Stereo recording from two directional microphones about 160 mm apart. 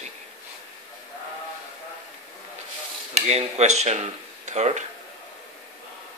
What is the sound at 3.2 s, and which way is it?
Speech, 40° right (ahead or behind).